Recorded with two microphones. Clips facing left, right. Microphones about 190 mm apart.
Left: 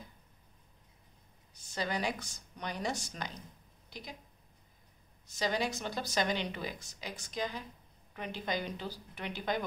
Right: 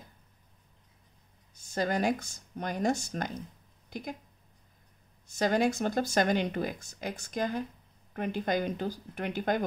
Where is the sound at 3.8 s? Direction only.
50° right (ahead or behind).